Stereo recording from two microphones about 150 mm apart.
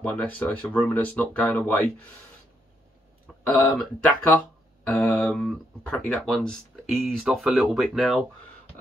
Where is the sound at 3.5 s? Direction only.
10° left (ahead or behind).